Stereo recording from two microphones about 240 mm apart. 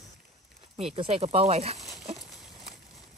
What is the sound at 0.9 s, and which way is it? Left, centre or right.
Speech, right.